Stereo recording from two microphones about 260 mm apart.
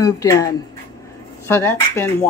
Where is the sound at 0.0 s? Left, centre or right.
Centre.